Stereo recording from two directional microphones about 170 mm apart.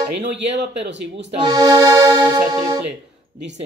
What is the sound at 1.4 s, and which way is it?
Accordion, 25° right (ahead or behind).